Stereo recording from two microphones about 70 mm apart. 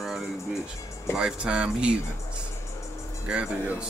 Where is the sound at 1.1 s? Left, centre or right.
Centre.